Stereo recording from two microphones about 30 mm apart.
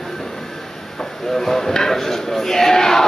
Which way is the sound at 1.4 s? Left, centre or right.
Centre.